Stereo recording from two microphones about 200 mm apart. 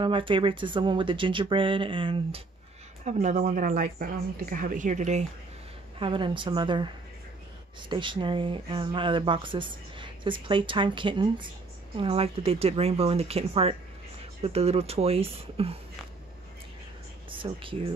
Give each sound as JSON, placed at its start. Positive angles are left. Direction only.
{"t": 0.0, "sound": "speech", "side_deg": -25}
{"t": 3.1, "sound": "speech", "side_deg": -35}
{"t": 5.9, "sound": "speech", "side_deg": -25}
{"t": 7.9, "sound": "speech", "side_deg": -25}
{"t": 17.3, "sound": "speech", "side_deg": -25}